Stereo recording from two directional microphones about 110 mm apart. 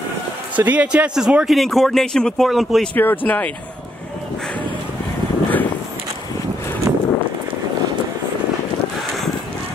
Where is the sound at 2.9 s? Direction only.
15° left (ahead or behind).